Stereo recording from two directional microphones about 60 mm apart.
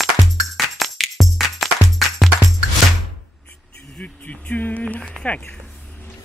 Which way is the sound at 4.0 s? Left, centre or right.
Left.